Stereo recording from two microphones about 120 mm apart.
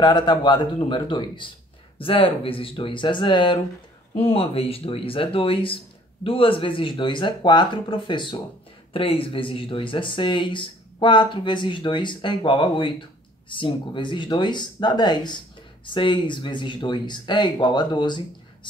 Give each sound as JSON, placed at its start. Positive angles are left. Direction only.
{"t": 0.0, "sound": "speech", "side_deg": 40}
{"t": 4.1, "sound": "speech", "side_deg": 55}